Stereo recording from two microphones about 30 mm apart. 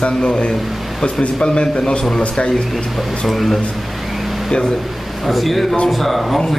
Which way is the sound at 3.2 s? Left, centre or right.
Centre.